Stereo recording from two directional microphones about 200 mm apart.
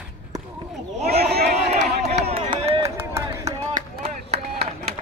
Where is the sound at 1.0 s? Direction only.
50° right (ahead or behind).